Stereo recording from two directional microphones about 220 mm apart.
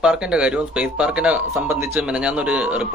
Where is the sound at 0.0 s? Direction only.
5° right (ahead or behind).